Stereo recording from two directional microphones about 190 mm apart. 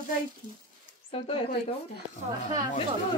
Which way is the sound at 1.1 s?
30° left (ahead or behind).